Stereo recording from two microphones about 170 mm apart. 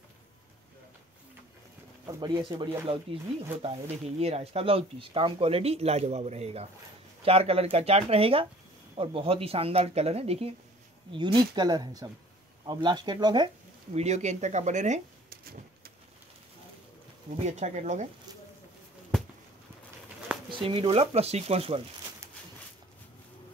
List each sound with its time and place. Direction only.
2.0 s speech: 25° right (ahead or behind)
13.9 s speech: 40° right (ahead or behind)
15.2 s a sound: 60° right (ahead or behind)
17.5 s speech: 45° right (ahead or behind)
20.5 s speech: 30° right (ahead or behind)